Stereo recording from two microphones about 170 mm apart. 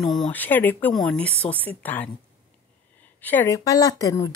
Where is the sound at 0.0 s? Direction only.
Centre (ahead or behind).